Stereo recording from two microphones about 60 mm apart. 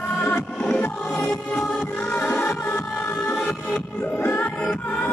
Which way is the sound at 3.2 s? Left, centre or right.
Left.